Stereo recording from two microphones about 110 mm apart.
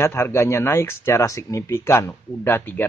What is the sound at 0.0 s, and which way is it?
Speech, 25° left (ahead or behind).